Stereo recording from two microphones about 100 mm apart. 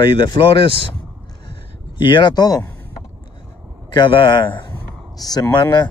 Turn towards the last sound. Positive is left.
turn(degrees=45)  # may be behind; listen again after turning